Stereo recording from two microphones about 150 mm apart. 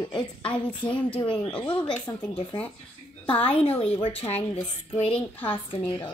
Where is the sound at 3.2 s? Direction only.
40° left (ahead or behind).